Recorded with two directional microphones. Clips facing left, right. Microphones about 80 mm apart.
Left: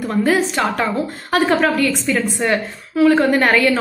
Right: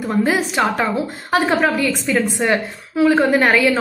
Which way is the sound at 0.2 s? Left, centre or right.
Centre.